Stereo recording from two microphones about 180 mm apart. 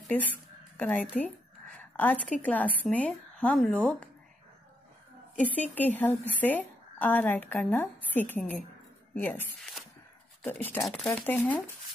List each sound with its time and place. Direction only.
0.1 s speech: 10° left (ahead or behind)
1.8 s a sound: 10° left (ahead or behind)
2.4 s a woman's voice: 10° left (ahead or behind)
5.4 s a woman's voice: 10° left (ahead or behind)